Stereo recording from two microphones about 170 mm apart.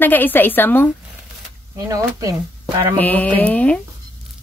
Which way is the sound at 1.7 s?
20° right (ahead or behind).